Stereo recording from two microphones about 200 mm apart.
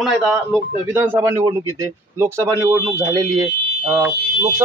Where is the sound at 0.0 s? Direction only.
Centre (ahead or behind).